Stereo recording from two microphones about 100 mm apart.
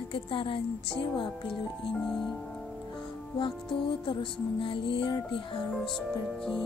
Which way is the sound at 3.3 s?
55° left (ahead or behind).